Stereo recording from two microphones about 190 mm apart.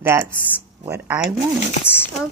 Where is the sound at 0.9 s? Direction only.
10° right (ahead or behind).